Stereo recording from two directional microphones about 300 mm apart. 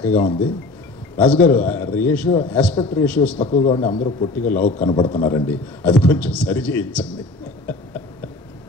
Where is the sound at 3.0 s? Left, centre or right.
Centre.